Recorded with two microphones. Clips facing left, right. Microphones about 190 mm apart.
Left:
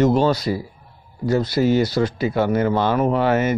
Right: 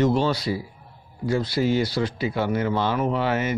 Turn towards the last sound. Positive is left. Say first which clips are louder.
# left 5 dB
turn(degrees=45)  # may be behind; listen again after turning